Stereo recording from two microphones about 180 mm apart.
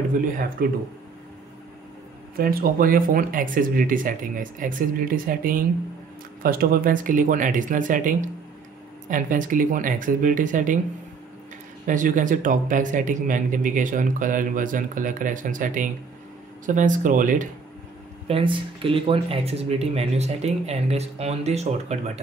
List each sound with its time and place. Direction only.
0.6 s speech: 55° right (ahead or behind)
2.3 s a man's voice: 55° right (ahead or behind)
9.1 s a man's voice: 45° right (ahead or behind)
11.8 s a man's voice: 45° right (ahead or behind)
18.2 s speech: 30° right (ahead or behind)